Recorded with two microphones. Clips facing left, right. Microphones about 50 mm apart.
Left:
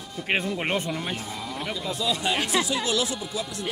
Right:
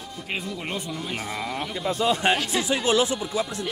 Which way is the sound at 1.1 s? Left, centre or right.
Right.